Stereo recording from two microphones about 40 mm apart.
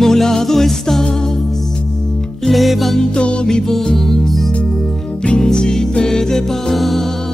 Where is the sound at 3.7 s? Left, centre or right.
Centre.